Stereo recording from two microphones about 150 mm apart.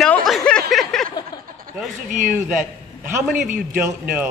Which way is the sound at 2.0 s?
60° right (ahead or behind).